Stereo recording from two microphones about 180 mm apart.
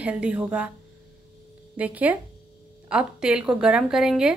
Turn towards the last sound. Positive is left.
turn(degrees=-5)  # may be behind; listen again after turning